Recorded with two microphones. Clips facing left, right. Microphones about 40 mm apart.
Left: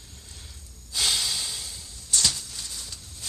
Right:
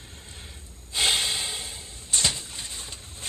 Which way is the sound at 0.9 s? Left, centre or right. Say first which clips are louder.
Right 3 dB; right.